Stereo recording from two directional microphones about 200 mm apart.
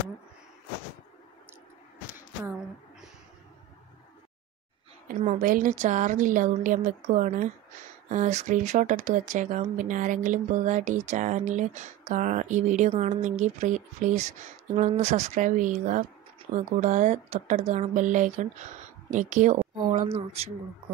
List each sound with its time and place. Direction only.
5.0 s speech: 40° right (ahead or behind)